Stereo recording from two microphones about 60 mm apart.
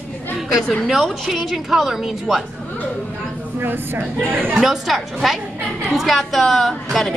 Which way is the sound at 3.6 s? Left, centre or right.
Right.